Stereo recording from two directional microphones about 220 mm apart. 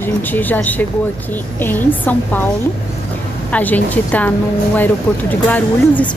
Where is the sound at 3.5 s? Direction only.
5° left (ahead or behind).